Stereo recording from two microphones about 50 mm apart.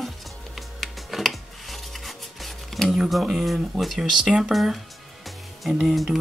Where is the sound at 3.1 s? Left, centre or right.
Centre.